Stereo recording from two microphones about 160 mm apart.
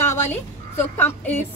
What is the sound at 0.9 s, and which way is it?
Speech, 15° left (ahead or behind).